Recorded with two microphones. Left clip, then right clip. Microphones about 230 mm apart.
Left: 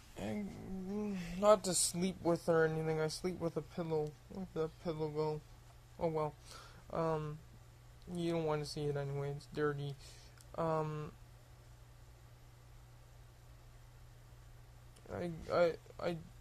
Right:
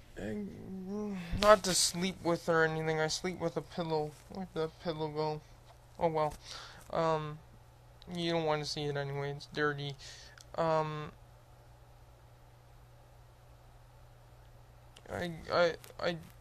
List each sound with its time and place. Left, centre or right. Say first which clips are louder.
0.8 s a sound: right 2 dB; centre
1.5 s speech: right 5 dB; centre
1.9 s speech: right 4 dB; centre
2.2 s speech: right 2 dB; centre
2.5 s speech: right 4 dB; centre
15.0 s speech: right 3 dB; centre